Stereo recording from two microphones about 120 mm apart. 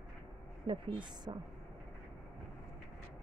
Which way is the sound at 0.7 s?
40° right (ahead or behind).